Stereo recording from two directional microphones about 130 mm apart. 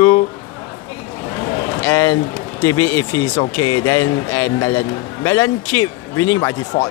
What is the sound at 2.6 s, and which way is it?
Speech, 20° left (ahead or behind).